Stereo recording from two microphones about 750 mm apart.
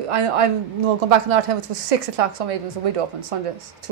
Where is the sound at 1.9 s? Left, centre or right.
Right.